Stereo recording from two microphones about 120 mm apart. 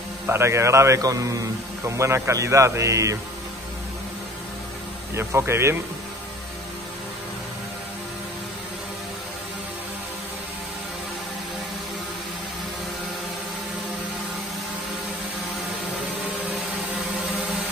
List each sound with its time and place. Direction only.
0.3 s a man's voice: 20° right (ahead or behind)
5.1 s a man's voice: 20° right (ahead or behind)